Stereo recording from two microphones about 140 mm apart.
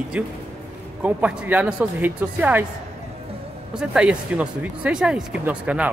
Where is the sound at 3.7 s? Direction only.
5° right (ahead or behind).